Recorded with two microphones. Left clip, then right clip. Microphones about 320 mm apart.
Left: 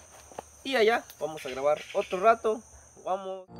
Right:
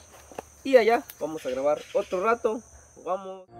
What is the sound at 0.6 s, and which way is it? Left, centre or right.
Speech, centre.